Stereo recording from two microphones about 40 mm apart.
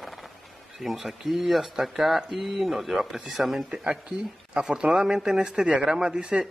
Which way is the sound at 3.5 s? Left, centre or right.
Right.